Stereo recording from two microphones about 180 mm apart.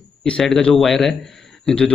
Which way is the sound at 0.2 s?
5° left (ahead or behind).